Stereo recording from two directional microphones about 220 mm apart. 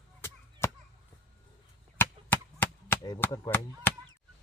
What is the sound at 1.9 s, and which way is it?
Chop, 10° left (ahead or behind).